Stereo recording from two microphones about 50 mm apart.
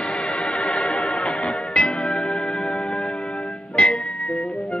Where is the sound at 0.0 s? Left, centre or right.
Centre.